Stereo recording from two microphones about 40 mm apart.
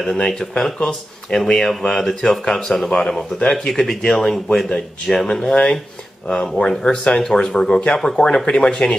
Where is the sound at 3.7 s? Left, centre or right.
Centre.